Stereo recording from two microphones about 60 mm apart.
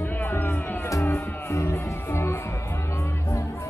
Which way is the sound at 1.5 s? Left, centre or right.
Left.